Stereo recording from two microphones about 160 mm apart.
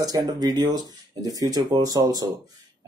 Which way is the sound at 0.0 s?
25° right (ahead or behind).